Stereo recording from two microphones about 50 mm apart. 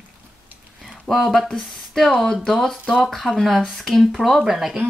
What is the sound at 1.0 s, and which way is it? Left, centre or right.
Speech, centre.